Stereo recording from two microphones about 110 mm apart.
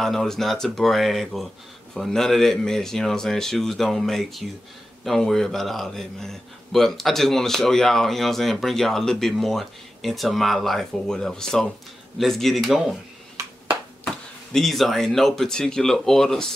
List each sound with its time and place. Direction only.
0.0 s a man's voice: centre (ahead or behind)
13.4 s a sound: 25° right (ahead or behind)
14.0 s speech: 5° left (ahead or behind)